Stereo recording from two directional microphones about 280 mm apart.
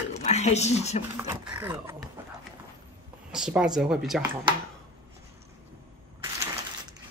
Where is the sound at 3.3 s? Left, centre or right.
Centre.